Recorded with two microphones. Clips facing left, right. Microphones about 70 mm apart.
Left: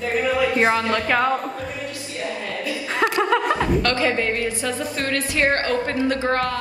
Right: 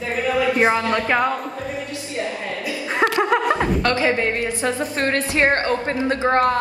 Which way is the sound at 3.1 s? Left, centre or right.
Right.